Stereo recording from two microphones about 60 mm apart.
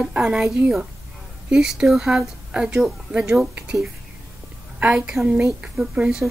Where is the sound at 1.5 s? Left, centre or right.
Centre.